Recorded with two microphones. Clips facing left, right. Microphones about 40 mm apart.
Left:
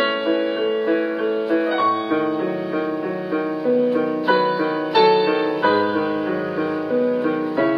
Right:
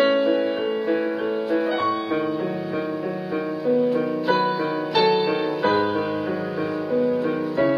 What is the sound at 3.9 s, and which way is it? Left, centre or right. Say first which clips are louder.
Music: left 3 dB; centre.